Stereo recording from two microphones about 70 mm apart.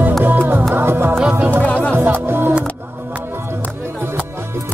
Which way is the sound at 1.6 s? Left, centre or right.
Centre.